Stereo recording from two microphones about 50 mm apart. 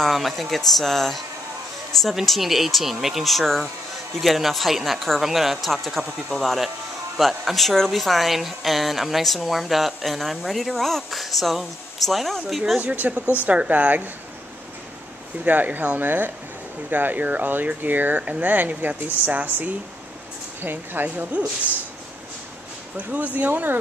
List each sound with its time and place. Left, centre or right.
0.0 s speech: centre
12.7 s speech: right
15.4 s speech: right
22.9 s speech: right